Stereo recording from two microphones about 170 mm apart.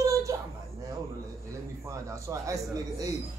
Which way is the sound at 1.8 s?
20° right (ahead or behind).